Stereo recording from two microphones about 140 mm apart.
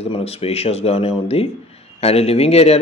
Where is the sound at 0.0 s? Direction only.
45° left (ahead or behind).